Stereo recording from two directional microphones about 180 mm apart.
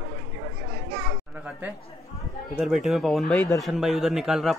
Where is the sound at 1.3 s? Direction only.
10° right (ahead or behind).